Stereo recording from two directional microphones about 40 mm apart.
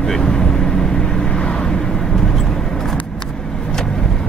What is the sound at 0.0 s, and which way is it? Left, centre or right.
Vehicle, centre.